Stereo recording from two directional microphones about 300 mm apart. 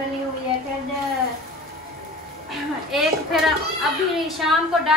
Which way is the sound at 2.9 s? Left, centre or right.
Centre.